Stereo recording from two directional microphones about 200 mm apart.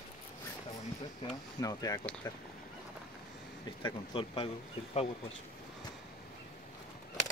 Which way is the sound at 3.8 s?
25° left (ahead or behind).